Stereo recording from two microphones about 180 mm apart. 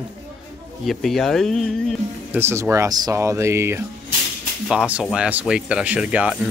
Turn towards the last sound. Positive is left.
turn(degrees=-5)  # may be behind; listen again after turning